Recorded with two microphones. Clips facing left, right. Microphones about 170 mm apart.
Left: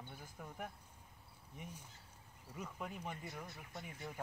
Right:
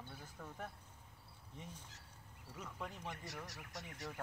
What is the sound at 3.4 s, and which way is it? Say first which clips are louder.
Speech: left 1 dB; 80° right.